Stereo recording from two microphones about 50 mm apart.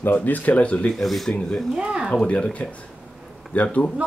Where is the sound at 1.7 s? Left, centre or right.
Centre.